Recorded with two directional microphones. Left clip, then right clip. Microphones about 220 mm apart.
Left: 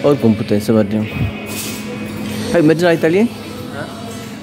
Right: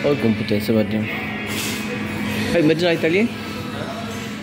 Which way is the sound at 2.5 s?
25° left (ahead or behind).